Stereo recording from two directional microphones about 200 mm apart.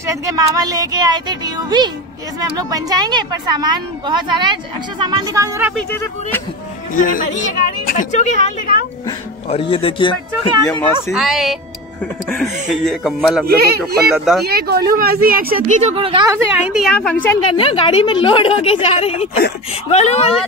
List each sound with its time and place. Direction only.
0.0 s a woman's voice: 15° right (ahead or behind)
5.8 s speech: 10° left (ahead or behind)
7.0 s a woman's voice: 40° left (ahead or behind); by 10.8 s 25° left (ahead or behind)
11.1 s speech: centre (ahead or behind)
13.5 s speech: 50° right (ahead or behind)
14.1 s speech: centre (ahead or behind)
14.4 s speech: 50° right (ahead or behind)
15.8 s a woman's voice: 30° right (ahead or behind)
16.3 s speech: 5° right (ahead or behind)
17.5 s a woman's voice: 25° left (ahead or behind)